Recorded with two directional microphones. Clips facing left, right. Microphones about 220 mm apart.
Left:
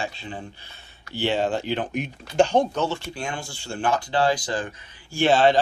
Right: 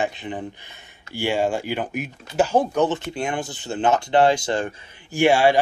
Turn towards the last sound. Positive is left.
turn(degrees=-10)  # may be behind; listen again after turning